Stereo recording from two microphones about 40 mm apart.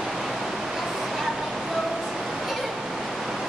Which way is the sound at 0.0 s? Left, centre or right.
Centre.